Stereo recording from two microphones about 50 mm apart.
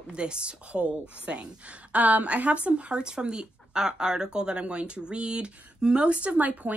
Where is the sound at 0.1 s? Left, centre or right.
Right.